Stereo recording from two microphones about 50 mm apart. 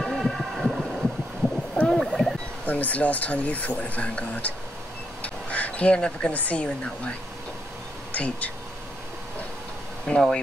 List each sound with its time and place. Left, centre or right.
0.0 s heart sounds: centre
1.9 s a sound: centre
2.6 s speech: left
5.2 s duck: left
6.3 s speech: left
10.1 s speech: centre